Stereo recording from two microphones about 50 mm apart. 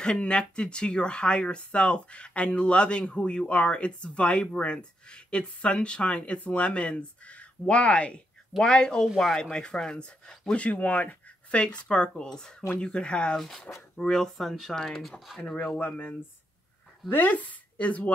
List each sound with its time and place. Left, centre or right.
0.0 s speech: centre
9.0 s speech: centre
9.4 s speech: centre
10.5 s speech: left; by 14.3 s centre
14.3 s speech: centre
17.1 s speech: left